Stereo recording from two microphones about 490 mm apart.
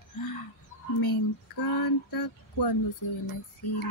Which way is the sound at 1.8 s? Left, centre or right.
Left.